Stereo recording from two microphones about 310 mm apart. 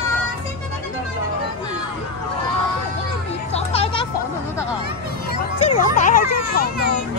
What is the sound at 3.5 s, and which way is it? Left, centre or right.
Music, centre.